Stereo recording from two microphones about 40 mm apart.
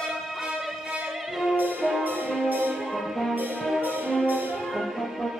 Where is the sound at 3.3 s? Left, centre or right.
Right.